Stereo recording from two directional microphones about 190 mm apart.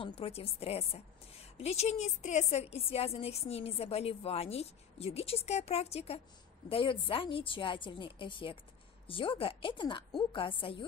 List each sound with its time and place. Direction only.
0.0 s a woman's voice: 30° left (ahead or behind)